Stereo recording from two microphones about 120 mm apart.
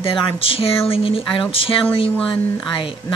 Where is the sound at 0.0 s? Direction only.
45° left (ahead or behind).